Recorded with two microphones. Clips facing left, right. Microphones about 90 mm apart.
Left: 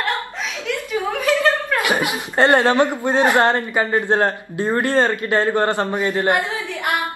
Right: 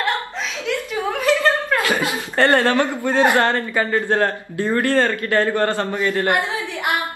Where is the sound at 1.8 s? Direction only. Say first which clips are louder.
Left 1 dB; 15° left (ahead or behind).